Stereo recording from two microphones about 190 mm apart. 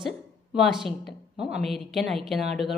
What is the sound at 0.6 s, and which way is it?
A woman's voice, centre (ahead or behind).